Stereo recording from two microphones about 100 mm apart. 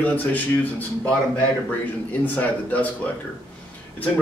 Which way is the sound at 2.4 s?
15° left (ahead or behind).